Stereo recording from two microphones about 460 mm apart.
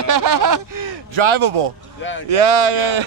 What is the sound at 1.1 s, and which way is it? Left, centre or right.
Speech, right.